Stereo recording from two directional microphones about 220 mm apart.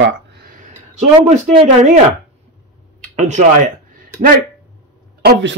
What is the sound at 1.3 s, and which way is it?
Speech, 30° right (ahead or behind).